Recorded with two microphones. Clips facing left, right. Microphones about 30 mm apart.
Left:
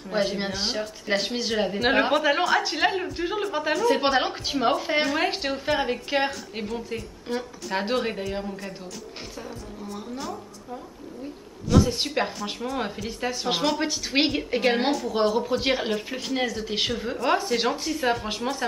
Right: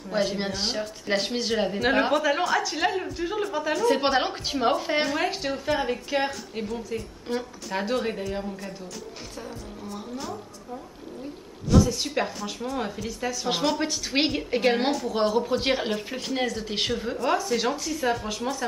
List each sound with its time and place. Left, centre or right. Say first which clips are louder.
0.1 s a woman's voice: left 1 dB; centre
3.7 s a woman's voice: left 1 dB; centre
5.2 s a woman's voice: left 1 dB; left
7.3 s a woman's voice: even; centre
7.7 s a woman's voice: left 1 dB; left
9.4 s a woman's voice: right 1 dB; centre
11.8 s a woman's voice: left 1 dB; left
13.5 s a woman's voice: left 1 dB; centre
17.3 s a woman's voice: left 2 dB; left